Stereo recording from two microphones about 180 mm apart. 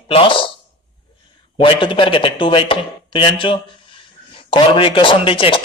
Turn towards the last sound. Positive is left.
turn(degrees=30)  # may be behind; listen again after turning